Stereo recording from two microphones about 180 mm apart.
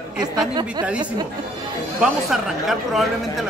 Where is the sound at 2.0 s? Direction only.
Centre (ahead or behind).